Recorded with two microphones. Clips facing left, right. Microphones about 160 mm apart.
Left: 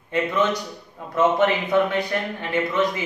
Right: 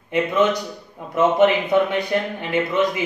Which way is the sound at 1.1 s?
20° right (ahead or behind).